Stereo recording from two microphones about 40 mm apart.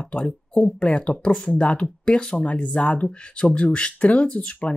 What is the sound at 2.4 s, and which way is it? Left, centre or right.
Speech, left.